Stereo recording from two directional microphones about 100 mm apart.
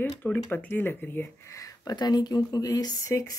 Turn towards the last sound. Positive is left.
turn(degrees=35)  # may be behind; listen again after turning